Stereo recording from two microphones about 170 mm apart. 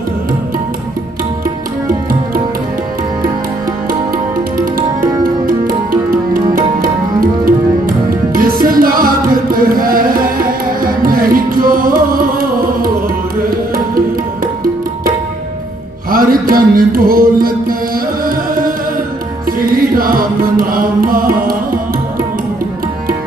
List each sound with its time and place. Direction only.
4.6 s music: 60° right (ahead or behind)
16.1 s mantra: 60° right (ahead or behind)
19.6 s music: 60° right (ahead or behind)